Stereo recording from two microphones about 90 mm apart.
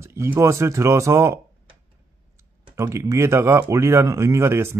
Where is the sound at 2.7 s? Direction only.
35° right (ahead or behind).